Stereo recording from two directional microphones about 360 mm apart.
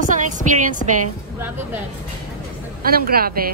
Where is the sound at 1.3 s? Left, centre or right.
Centre.